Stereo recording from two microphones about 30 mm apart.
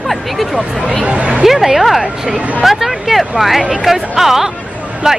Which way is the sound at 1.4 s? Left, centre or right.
Centre.